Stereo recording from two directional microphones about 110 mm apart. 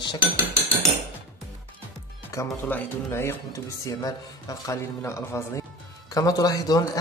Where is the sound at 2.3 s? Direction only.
30° left (ahead or behind).